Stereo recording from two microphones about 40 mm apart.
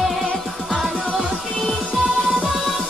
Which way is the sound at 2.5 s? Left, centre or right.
Centre.